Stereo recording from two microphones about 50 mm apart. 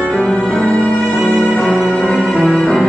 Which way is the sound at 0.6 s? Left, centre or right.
Centre.